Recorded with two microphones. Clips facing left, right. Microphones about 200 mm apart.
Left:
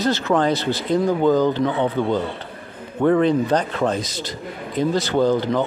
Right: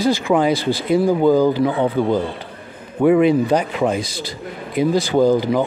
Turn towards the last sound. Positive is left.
turn(degrees=-10)  # may be behind; listen again after turning